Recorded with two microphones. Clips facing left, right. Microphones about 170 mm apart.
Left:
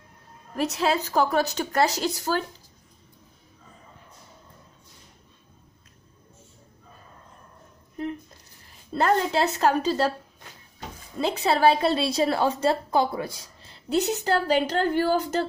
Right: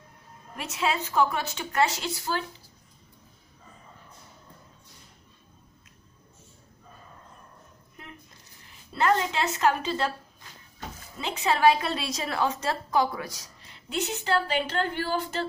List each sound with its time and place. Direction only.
0.6 s a woman's voice: 40° left (ahead or behind)
8.9 s a woman's voice: 35° left (ahead or behind)
11.1 s a woman's voice: 35° left (ahead or behind)